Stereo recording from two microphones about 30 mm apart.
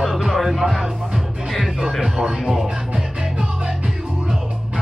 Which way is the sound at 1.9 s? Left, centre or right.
Centre.